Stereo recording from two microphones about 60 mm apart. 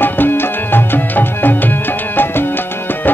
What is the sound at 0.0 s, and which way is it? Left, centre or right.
Music, left.